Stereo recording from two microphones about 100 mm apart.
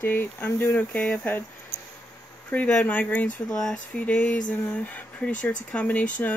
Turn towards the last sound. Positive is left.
turn(degrees=15)  # may be behind; listen again after turning